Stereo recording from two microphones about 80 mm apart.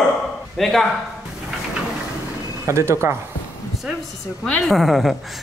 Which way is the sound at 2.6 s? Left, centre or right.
Right.